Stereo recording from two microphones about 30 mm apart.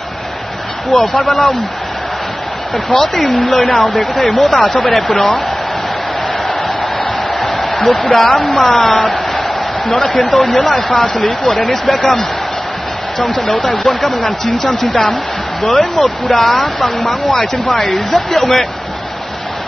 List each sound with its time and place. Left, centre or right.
1.1 s speech: centre
3.3 s speech: centre
6.2 s a sound: centre
7.8 s speech: centre
9.0 s a sound: centre
9.8 s speech: centre